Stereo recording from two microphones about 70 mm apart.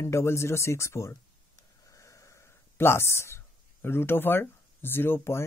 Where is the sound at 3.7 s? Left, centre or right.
Left.